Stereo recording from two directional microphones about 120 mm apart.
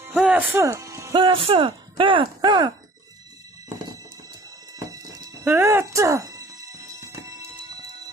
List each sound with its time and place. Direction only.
0.1 s speech: 10° right (ahead or behind)
1.1 s speech: 45° right (ahead or behind)
4.7 s a sound: 30° right (ahead or behind)
5.4 s music: 15° right (ahead or behind)